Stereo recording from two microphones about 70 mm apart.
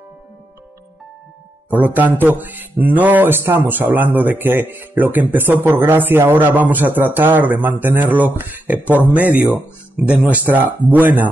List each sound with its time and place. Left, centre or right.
1.7 s speech: right